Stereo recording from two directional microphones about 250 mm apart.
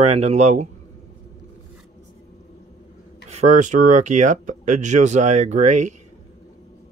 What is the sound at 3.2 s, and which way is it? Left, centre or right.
Speech, right.